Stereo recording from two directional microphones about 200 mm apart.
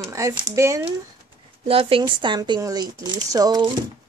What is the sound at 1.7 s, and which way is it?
Speech, 30° right (ahead or behind).